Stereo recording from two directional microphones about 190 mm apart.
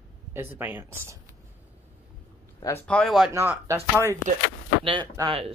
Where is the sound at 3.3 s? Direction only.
15° right (ahead or behind).